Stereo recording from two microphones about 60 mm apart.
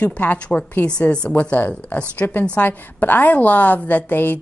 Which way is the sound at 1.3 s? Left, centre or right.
Left.